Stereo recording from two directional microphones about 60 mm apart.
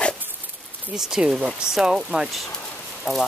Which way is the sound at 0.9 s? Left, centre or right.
Centre.